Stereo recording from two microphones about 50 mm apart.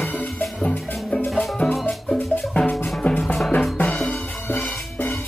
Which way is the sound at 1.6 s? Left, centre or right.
Centre.